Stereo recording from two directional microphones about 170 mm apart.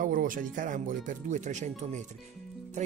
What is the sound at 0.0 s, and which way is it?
Speech, 55° right (ahead or behind).